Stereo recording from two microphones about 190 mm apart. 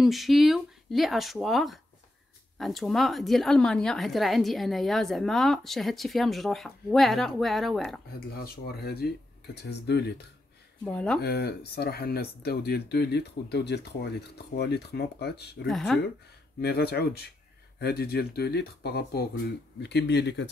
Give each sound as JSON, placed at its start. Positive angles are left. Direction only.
{"t": 0.0, "sound": "a woman's voice", "side_deg": 0}
{"t": 9.0, "sound": "speech", "side_deg": 55}
{"t": 10.8, "sound": "a woman's voice", "side_deg": 5}
{"t": 11.1, "sound": "speech", "side_deg": 55}
{"t": 15.7, "sound": "a woman's voice", "side_deg": 0}
{"t": 16.6, "sound": "speech", "side_deg": 55}